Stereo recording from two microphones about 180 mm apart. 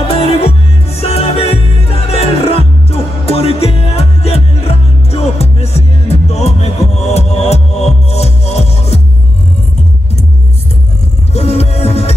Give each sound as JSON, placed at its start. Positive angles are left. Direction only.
{"t": 0.4, "sound": "music", "side_deg": 35}
{"t": 11.3, "sound": "music", "side_deg": 35}